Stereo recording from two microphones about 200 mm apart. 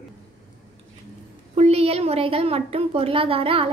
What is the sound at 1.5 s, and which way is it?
A woman's voice, 30° right (ahead or behind).